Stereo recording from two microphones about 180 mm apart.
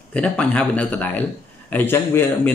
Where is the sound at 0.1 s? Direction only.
5° left (ahead or behind).